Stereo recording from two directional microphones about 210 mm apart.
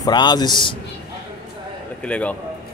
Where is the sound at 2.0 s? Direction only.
5° left (ahead or behind).